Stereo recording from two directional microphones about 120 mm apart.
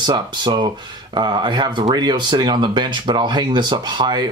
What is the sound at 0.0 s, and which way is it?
Speech, 40° right (ahead or behind).